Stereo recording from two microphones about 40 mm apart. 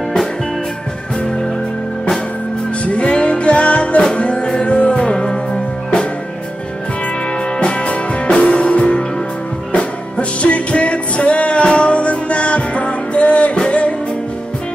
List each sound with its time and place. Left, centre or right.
2.8 s music: left
7.5 s music: left